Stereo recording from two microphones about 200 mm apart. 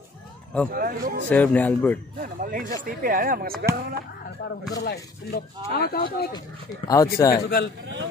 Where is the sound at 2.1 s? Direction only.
45° right (ahead or behind).